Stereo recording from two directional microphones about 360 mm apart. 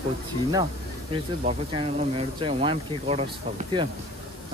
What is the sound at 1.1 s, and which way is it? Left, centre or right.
Speech, centre.